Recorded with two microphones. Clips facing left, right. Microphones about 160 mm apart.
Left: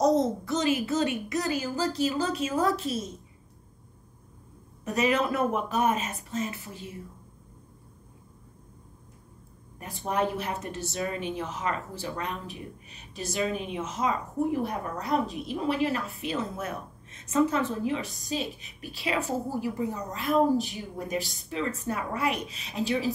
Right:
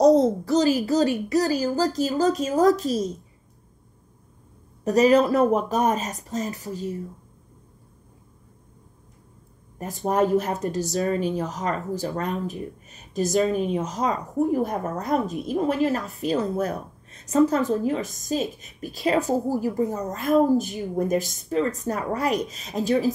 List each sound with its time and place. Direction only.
0.0 s a woman's voice: 35° right (ahead or behind)
4.8 s a woman's voice: 35° right (ahead or behind)
9.8 s a woman's voice: 40° right (ahead or behind)